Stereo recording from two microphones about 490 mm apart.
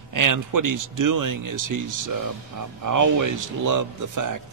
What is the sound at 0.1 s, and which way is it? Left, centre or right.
A man's voice, right.